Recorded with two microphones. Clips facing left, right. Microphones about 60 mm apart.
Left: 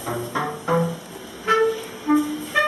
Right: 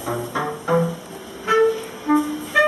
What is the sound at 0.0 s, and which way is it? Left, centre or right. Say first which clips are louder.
Music: right 1 dB; centre.